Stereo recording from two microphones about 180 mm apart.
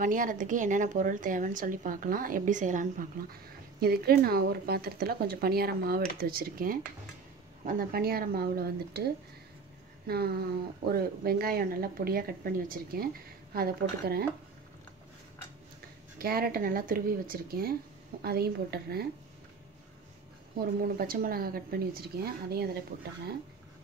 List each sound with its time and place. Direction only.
0.0 s a woman's voice: 50° right (ahead or behind)
3.8 s speech: 60° right (ahead or behind)
16.2 s speech: 55° right (ahead or behind)
20.8 s speech: 55° right (ahead or behind)